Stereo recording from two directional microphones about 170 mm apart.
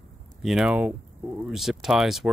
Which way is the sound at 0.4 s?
Centre (ahead or behind).